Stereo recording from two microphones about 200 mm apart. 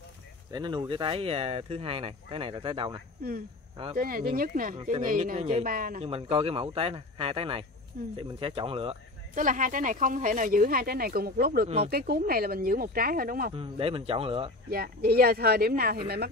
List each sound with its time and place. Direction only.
0.5 s speech: 20° right (ahead or behind)
3.2 s speech: 50° right (ahead or behind)
6.0 s speech: 30° right (ahead or behind)
8.0 s speech: 45° right (ahead or behind)
8.4 s speech: 25° right (ahead or behind)
9.3 s speech: 40° right (ahead or behind)
13.5 s speech: 30° right (ahead or behind)
14.7 s speech: 50° right (ahead or behind)